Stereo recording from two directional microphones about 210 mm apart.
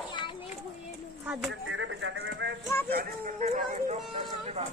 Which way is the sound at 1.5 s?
65° right (ahead or behind).